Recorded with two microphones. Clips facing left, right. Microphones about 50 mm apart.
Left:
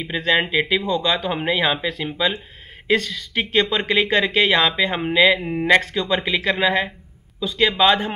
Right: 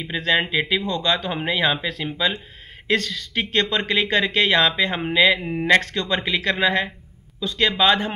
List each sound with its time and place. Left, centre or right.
0.0 s speech: centre